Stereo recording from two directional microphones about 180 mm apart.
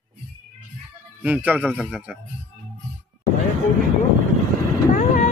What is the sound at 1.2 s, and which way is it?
Speech, 10° right (ahead or behind).